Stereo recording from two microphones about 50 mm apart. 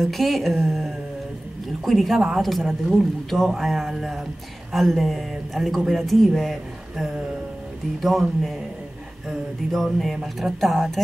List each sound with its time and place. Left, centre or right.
0.0 s speech: centre